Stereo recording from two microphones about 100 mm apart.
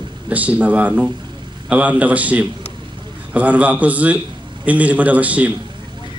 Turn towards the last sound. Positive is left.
turn(degrees=-15)  # may be behind; listen again after turning